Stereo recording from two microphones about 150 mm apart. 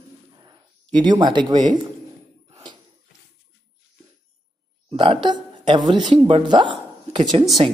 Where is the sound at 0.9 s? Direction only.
30° right (ahead or behind).